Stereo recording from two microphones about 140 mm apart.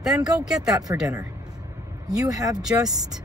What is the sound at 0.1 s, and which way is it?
Speech, 25° right (ahead or behind).